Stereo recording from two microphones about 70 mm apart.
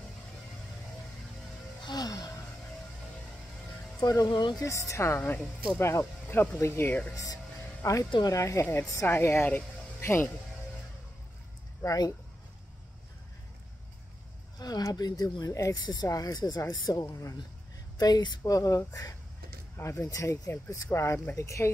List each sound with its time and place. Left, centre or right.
1.9 s music: left
4.0 s speech: left
7.8 s speech: left
9.0 s a woman's voice: left
11.8 s speech: left
14.6 s speech: left
16.8 s speech: left
17.9 s speech: left
18.4 s speech: left